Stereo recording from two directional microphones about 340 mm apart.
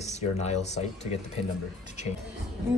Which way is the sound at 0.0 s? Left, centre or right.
Centre.